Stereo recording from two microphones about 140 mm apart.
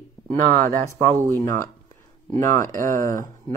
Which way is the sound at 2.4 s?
65° right (ahead or behind).